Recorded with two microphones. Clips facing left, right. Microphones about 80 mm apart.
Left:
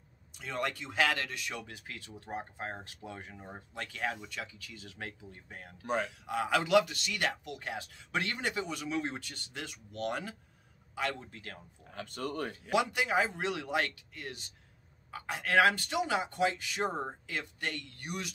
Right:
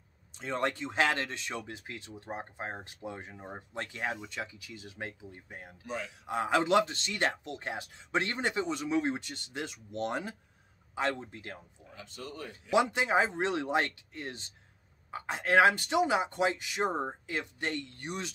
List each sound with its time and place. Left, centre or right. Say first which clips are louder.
0.3 s a man's voice: right 3 dB; right
5.8 s speech: left 6 dB; left
6.2 s a man's voice: right 7 dB; right
11.9 s speech: left 6 dB; left
12.7 s a man's voice: right 3 dB; right